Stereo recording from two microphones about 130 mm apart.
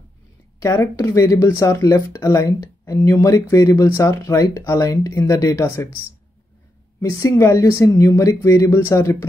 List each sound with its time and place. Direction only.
0.6 s speech: 25° left (ahead or behind)
7.0 s speech: 25° left (ahead or behind)